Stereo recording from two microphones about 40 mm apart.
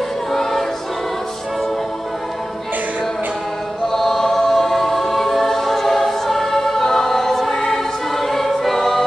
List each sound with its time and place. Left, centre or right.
0.3 s music: centre
3.9 s choir: centre